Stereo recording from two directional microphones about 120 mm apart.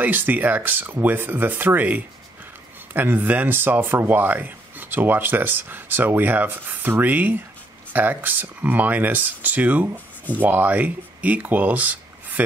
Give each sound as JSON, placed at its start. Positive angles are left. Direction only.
{"t": 0.0, "sound": "speech", "side_deg": -15}